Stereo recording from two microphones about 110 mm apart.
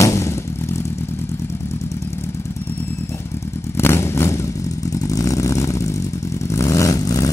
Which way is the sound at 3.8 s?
25° left (ahead or behind).